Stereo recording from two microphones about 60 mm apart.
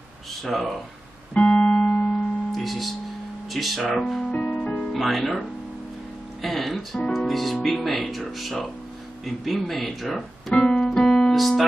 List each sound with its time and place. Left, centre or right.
0.4 s speech: centre
1.3 s music: centre
2.5 s music: centre
3.5 s speech: centre
4.2 s music: centre
4.9 s speech: centre
6.4 s speech: centre
10.5 s piano: centre
10.9 s piano: centre